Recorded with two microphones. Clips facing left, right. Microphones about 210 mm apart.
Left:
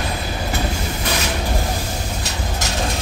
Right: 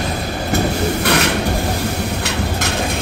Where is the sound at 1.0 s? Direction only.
65° right (ahead or behind).